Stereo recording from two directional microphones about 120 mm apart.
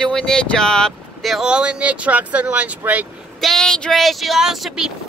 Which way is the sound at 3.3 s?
5° left (ahead or behind).